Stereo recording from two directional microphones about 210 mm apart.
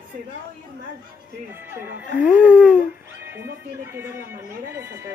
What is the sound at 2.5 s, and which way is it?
Speech, 5° left (ahead or behind).